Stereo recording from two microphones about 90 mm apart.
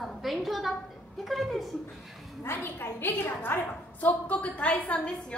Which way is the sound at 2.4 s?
25° left (ahead or behind).